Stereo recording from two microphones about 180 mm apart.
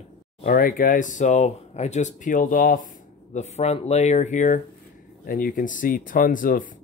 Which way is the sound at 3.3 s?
40° left (ahead or behind).